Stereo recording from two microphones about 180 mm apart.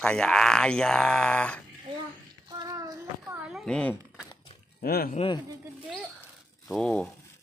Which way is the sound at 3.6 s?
5° left (ahead or behind).